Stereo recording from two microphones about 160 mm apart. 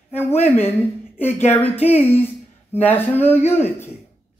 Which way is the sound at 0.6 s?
15° left (ahead or behind).